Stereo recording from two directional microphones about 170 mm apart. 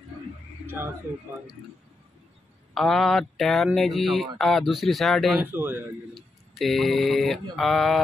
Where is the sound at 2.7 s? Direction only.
Centre (ahead or behind).